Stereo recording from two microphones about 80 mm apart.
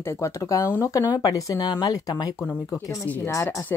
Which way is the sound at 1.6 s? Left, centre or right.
Left.